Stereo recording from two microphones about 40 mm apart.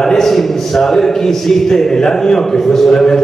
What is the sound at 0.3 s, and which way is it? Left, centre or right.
A man's voice, centre.